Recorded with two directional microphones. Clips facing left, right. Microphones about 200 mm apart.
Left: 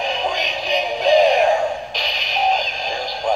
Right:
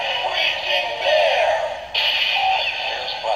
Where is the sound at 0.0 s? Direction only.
40° left (ahead or behind).